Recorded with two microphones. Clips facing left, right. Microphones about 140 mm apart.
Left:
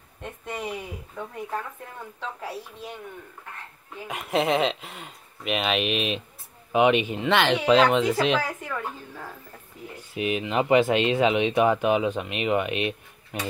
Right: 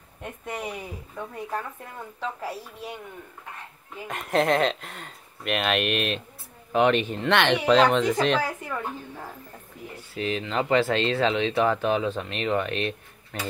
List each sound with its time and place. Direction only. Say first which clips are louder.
0.2 s a sound: even; 10° right (ahead or behind)
4.1 s speech: right 1 dB; 5° left (ahead or behind)
8.6 s a woman's voice: right 1 dB; 15° right (ahead or behind)
9.9 s speech: left 2 dB; 15° left (ahead or behind)